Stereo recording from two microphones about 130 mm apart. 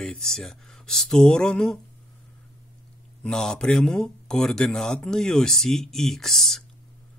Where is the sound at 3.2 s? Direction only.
5° left (ahead or behind).